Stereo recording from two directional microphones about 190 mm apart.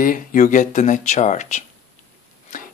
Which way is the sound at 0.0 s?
45° left (ahead or behind).